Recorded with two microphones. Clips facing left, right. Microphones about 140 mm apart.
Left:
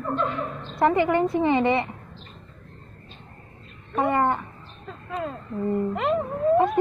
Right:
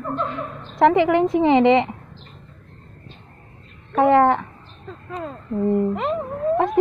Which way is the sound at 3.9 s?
90° right.